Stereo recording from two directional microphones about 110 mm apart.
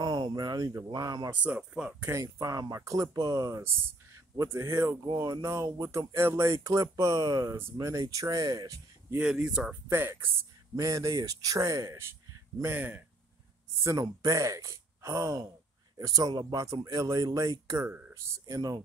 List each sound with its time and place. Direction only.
0.0 s a sound: 40° right (ahead or behind)
0.8 s speech: 35° right (ahead or behind)
1.3 s speech: 10° right (ahead or behind)
2.1 s speech: 30° right (ahead or behind)
3.6 s speech: 25° right (ahead or behind)
5.0 s speech: 35° right (ahead or behind)
9.2 s speech: 5° right (ahead or behind)
9.8 s speech: 20° right (ahead or behind)
13.8 s speech: 30° right (ahead or behind)
17.8 s speech: 20° right (ahead or behind)